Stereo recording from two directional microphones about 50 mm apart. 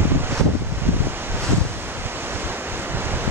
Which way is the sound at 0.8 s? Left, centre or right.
Right.